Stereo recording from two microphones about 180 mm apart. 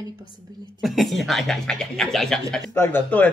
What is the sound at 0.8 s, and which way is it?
Speech, centre (ahead or behind).